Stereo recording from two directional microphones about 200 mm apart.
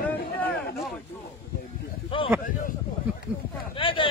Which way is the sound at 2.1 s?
25° left (ahead or behind).